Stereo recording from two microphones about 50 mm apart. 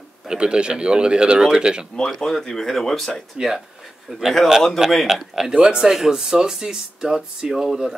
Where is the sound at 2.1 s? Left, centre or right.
Centre.